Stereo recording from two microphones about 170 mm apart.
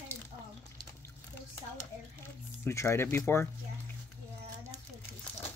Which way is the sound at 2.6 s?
15° left (ahead or behind).